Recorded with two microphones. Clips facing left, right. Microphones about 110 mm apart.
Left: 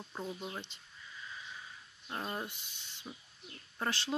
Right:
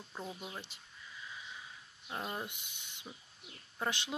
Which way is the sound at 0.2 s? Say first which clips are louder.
Left 3 dB; centre (ahead or behind).